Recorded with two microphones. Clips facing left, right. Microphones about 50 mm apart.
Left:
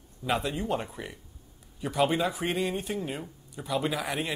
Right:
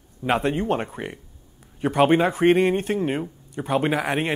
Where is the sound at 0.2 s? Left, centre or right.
Right.